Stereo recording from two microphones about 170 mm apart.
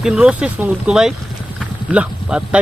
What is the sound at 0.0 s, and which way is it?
Speech, 5° right (ahead or behind).